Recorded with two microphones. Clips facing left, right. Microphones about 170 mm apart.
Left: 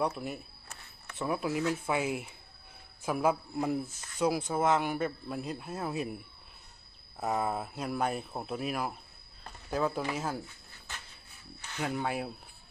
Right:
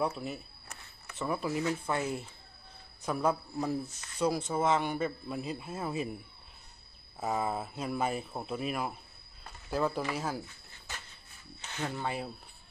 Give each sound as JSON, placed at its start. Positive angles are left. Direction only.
{"t": 0.1, "sound": "speech", "side_deg": 0}
{"t": 7.2, "sound": "speech", "side_deg": 0}
{"t": 11.8, "sound": "speech", "side_deg": 10}